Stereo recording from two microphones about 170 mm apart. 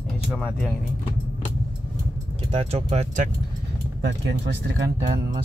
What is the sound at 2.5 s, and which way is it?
Speech, 40° right (ahead or behind).